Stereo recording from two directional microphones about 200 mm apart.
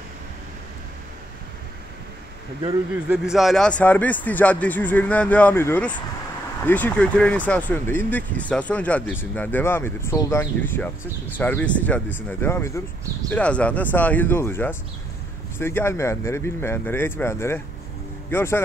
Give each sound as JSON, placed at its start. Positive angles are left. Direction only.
{"t": 3.1, "sound": "speech", "side_deg": 0}